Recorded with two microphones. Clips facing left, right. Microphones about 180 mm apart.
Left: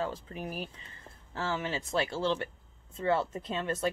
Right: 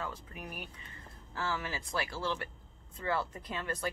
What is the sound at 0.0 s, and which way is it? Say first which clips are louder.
Speech: left 7 dB; 30° left (ahead or behind).